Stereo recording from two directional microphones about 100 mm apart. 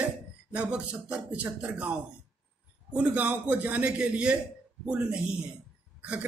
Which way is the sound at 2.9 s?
15° right (ahead or behind).